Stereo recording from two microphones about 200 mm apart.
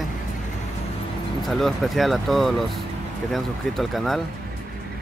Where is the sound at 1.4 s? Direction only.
Centre (ahead or behind).